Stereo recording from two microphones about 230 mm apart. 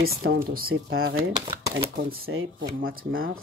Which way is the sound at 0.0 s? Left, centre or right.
Right.